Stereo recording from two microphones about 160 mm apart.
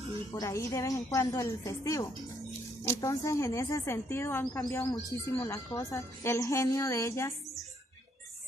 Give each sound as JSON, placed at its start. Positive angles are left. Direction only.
{"t": 0.3, "sound": "speech", "side_deg": 20}